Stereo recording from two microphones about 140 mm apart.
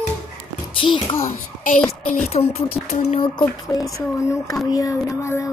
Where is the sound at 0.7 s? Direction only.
35° left (ahead or behind).